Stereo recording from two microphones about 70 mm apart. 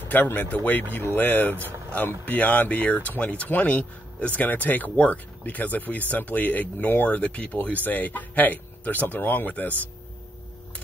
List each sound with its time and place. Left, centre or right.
0.1 s speech: left